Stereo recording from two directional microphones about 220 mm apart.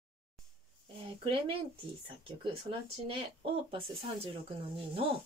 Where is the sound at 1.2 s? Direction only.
25° right (ahead or behind).